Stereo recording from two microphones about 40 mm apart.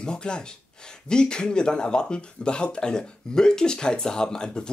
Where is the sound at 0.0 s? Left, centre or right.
Left.